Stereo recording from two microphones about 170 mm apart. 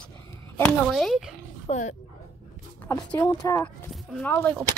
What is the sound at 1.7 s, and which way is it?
Speech, 45° left (ahead or behind).